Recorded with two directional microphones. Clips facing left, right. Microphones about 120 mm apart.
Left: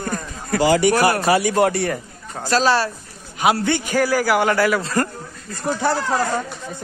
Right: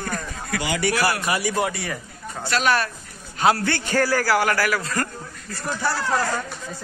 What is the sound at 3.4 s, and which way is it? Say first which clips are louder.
A man's voice: left 2 dB; 15° left (ahead or behind).